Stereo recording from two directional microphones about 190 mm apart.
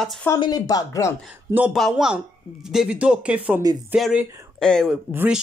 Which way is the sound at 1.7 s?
Centre (ahead or behind).